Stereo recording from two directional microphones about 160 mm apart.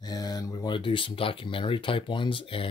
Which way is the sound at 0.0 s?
25° left (ahead or behind).